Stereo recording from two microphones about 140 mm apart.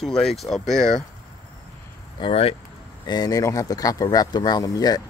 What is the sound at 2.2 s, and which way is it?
Speech, 45° left (ahead or behind).